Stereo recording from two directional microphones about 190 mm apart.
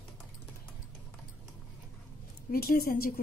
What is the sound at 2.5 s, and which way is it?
Speech, 50° left (ahead or behind).